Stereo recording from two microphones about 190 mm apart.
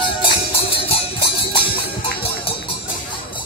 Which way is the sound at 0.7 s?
30° left (ahead or behind).